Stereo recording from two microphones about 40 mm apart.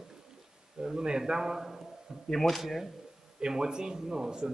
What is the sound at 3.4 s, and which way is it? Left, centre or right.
Speech, centre.